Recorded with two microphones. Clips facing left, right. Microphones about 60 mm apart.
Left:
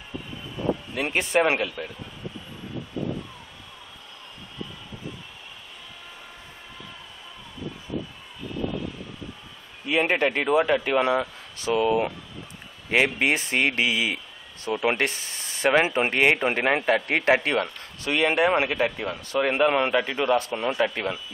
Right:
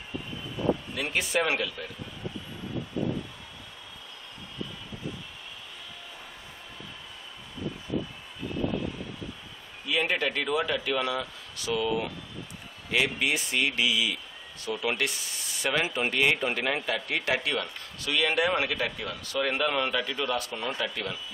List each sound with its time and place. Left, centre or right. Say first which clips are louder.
0.9 s speech: left 5 dB; left
9.8 s speech: left 5 dB; left